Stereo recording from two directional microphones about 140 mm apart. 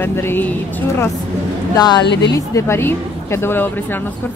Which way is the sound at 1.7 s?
30° left (ahead or behind).